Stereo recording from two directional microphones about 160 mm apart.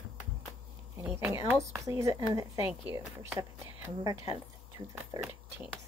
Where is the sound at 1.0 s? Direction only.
15° right (ahead or behind).